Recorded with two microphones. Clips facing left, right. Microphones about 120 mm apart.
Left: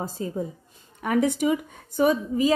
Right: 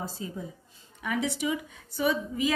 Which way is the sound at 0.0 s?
45° left (ahead or behind).